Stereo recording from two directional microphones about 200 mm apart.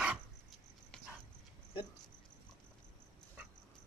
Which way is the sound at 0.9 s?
5° left (ahead or behind).